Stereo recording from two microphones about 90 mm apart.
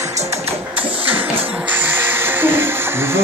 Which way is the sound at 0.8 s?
90° right.